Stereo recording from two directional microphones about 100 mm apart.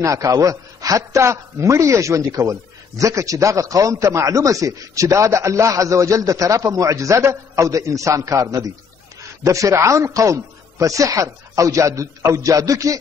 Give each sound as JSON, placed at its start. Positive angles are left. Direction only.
{"t": 0.0, "sound": "a man's voice", "side_deg": -35}